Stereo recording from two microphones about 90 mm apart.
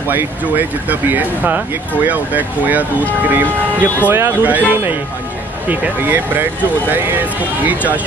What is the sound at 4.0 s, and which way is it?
Speech, 20° right (ahead or behind).